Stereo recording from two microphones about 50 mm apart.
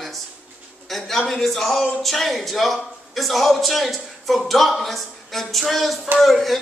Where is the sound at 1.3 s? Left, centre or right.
Centre.